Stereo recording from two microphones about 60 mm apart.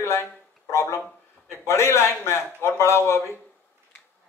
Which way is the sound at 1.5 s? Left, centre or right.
Left.